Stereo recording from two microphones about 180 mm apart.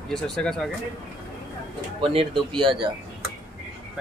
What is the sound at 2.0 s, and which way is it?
Speech, 30° right (ahead or behind).